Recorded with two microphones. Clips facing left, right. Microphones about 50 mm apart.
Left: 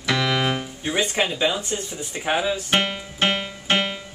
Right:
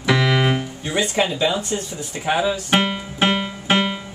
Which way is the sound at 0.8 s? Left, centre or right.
Centre.